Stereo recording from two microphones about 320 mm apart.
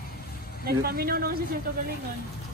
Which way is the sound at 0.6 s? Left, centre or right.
Right.